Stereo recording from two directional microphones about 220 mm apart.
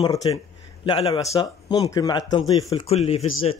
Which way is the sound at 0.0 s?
15° left (ahead or behind).